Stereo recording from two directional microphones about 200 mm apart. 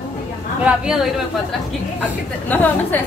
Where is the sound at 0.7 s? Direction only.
5° right (ahead or behind).